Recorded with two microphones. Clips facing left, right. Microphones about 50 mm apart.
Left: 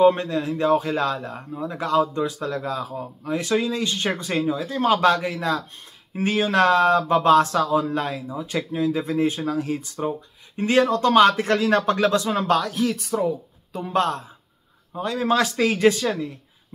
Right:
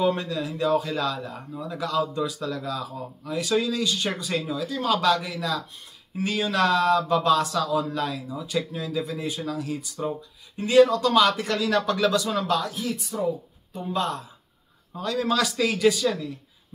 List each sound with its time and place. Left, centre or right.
0.0 s speech: left
13.9 s speech: left
15.0 s speech: left